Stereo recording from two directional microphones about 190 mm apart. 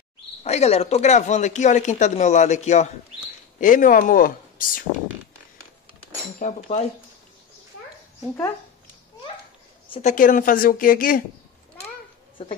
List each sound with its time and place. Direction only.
0.4 s speech: 35° left (ahead or behind)
6.4 s speech: 35° left (ahead or behind)
10.0 s speech: 45° left (ahead or behind)